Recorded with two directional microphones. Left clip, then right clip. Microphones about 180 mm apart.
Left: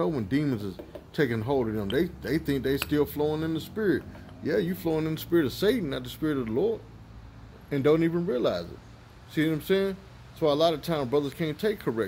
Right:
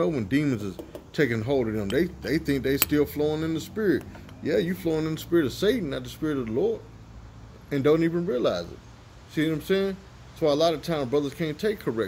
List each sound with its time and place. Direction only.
0.0 s speech: 5° left (ahead or behind)